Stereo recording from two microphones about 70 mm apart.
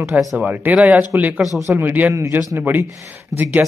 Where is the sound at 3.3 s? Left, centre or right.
Right.